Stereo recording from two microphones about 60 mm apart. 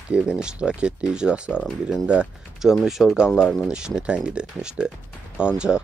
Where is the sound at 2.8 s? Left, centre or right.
Centre.